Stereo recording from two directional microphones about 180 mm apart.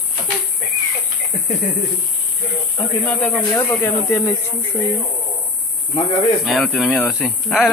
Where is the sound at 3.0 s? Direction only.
10° left (ahead or behind).